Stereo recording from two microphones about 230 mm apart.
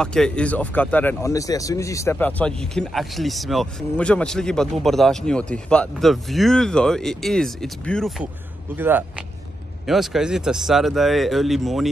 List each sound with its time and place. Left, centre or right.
0.0 s speech: centre
8.7 s speech: centre